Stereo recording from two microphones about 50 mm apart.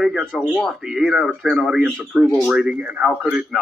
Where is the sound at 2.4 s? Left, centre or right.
Centre.